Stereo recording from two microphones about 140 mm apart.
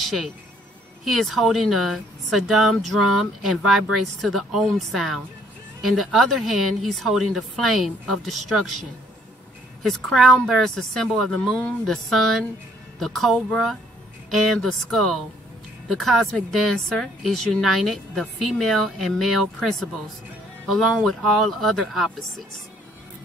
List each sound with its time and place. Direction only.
0.0 s speech: centre (ahead or behind)
9.8 s speech: centre (ahead or behind)
20.7 s speech: 5° left (ahead or behind)